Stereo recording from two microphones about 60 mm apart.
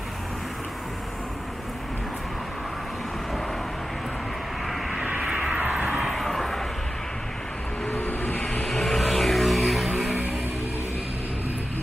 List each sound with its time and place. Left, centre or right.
4.9 s vehicle: centre
7.9 s vehicle: left
8.5 s vehicle: centre